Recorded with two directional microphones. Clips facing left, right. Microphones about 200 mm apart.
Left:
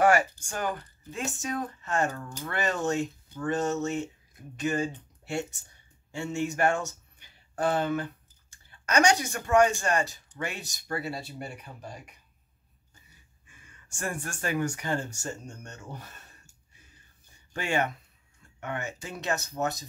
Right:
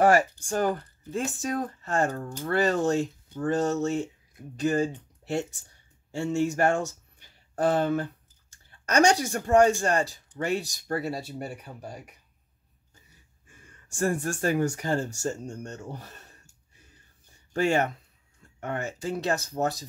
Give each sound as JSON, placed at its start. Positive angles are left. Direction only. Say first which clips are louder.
{"t": 0.0, "sound": "speech", "louder": "right 2 dB", "side_deg": -35}
{"t": 13.5, "sound": "speech", "louder": "right 3 dB", "side_deg": -40}
{"t": 17.5, "sound": "speech", "louder": "right 5 dB", "side_deg": -35}